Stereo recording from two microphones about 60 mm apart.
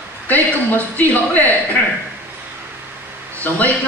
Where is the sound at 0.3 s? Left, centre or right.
Left.